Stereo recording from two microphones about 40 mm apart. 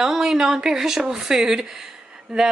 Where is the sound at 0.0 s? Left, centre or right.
Centre.